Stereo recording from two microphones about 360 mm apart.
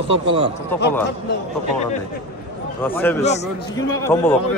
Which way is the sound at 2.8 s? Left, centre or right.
Centre.